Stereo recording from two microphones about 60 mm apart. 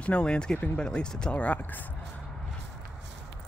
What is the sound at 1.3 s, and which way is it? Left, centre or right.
Speech, left.